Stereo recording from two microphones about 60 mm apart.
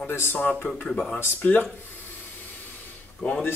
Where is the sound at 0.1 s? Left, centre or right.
Left.